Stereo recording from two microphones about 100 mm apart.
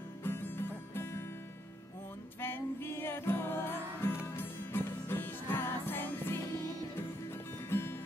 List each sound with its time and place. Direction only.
0.2 s music: 20° left (ahead or behind)
2.4 s music: 20° left (ahead or behind)